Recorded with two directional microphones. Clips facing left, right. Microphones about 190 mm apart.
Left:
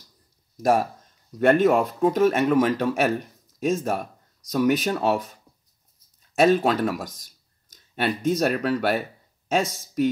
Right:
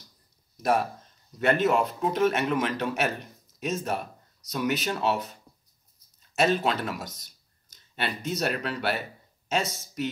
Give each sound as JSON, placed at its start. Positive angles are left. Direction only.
{"t": 0.6, "sound": "speech", "side_deg": 45}
{"t": 6.3, "sound": "speech", "side_deg": 50}